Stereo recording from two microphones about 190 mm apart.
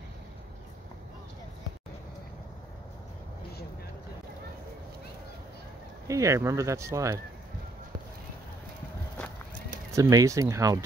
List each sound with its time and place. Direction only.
6.0 s speech: 15° right (ahead or behind)
9.9 s speech: 15° right (ahead or behind)